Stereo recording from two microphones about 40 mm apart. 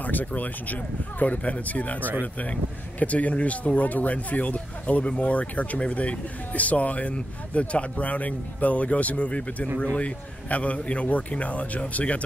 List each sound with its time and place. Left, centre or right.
0.0 s speech: left